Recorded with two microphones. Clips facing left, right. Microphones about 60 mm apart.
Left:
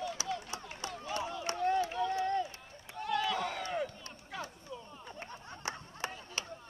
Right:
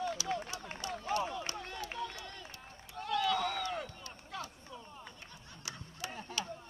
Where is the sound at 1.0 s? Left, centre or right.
Right.